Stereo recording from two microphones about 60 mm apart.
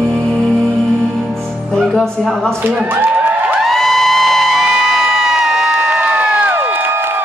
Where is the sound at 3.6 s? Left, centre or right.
Centre; by 6.5 s right.